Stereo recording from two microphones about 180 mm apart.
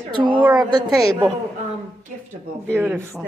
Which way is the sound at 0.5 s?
20° right (ahead or behind).